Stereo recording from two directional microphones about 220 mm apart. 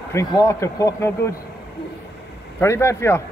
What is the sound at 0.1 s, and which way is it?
Speech, 15° left (ahead or behind).